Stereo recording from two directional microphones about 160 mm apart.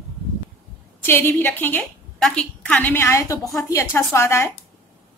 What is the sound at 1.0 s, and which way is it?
A woman's voice, 15° left (ahead or behind).